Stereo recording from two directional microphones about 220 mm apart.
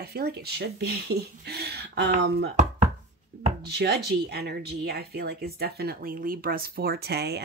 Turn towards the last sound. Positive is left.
turn(degrees=-45)  # may be behind; listen again after turning